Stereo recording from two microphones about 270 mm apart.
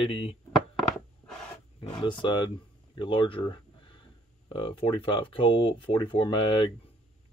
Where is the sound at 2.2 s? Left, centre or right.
Centre.